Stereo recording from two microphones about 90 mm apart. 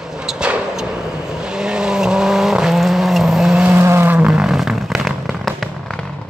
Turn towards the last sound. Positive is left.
turn(degrees=0)  # may be behind; listen again after turning